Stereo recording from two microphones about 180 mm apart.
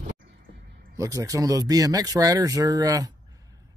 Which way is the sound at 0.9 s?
15° right (ahead or behind).